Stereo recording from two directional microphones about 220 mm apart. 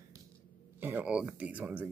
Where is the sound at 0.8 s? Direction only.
10° right (ahead or behind).